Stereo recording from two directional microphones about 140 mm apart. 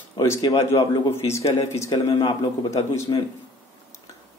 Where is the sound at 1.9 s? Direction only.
30° left (ahead or behind).